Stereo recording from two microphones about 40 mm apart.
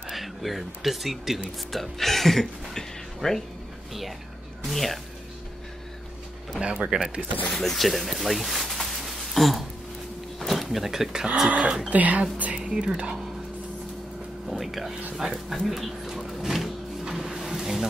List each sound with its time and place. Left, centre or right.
0.1 s speech: centre
4.6 s speech: centre
6.6 s speech: right
7.5 s speech: centre
11.4 s speech: right
11.9 s speech: right
12.5 s speech: right
14.5 s speech: centre
17.0 s a sound: centre